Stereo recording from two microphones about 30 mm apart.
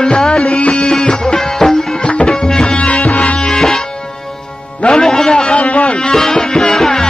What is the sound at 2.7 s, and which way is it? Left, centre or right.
Music, left.